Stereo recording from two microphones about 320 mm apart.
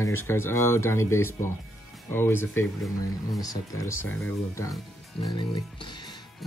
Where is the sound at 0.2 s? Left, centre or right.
Centre.